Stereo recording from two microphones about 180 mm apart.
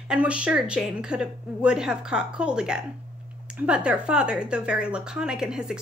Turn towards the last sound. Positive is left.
turn(degrees=-5)  # may be behind; listen again after turning